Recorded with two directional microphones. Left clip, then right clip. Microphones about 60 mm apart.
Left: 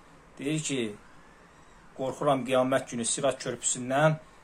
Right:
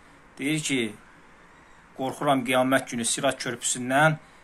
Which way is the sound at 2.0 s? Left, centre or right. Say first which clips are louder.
Right 2 dB; right.